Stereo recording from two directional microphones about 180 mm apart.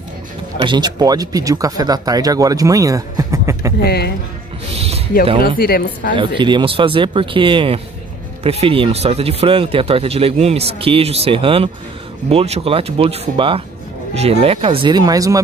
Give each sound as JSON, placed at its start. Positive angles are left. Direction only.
{"t": 0.6, "sound": "speech", "side_deg": -25}
{"t": 3.8, "sound": "speech", "side_deg": 60}
{"t": 4.7, "sound": "a sound", "side_deg": -35}
{"t": 5.6, "sound": "speech", "side_deg": 60}
{"t": 6.1, "sound": "speech", "side_deg": -25}